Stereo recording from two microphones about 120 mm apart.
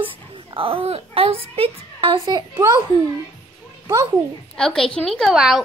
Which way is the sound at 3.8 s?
20° right (ahead or behind).